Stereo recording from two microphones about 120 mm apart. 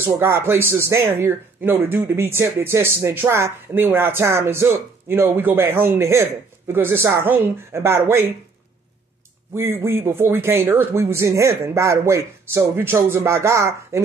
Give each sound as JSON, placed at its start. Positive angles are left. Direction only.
{"t": 0.0, "sound": "speech", "side_deg": -20}
{"t": 9.6, "sound": "speech", "side_deg": -20}